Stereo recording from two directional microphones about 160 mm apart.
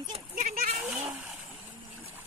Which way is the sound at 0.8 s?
5° right (ahead or behind).